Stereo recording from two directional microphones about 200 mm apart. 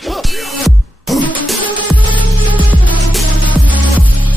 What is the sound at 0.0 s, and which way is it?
Music, centre (ahead or behind).